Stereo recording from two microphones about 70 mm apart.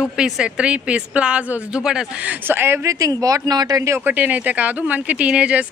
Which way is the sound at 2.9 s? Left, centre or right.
Right.